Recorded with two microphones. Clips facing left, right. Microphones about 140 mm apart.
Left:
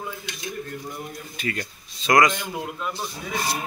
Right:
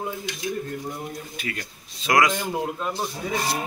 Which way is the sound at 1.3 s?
5° right (ahead or behind).